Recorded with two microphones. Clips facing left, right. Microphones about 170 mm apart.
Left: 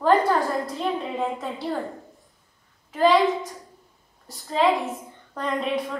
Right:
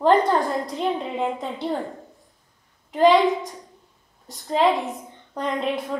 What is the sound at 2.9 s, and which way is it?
Speech, centre (ahead or behind).